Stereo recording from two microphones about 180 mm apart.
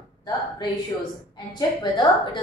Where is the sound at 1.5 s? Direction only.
25° left (ahead or behind).